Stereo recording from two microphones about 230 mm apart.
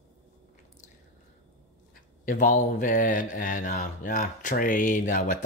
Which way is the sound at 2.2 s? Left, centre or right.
Left.